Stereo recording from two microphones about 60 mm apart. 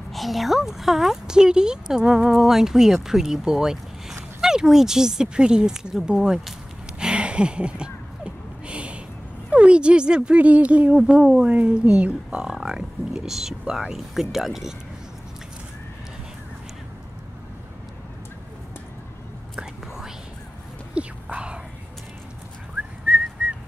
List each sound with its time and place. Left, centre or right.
0.1 s speech: centre
7.0 s a sound: centre
9.5 s speech: centre
19.5 s whispering: centre
23.0 s whistling: centre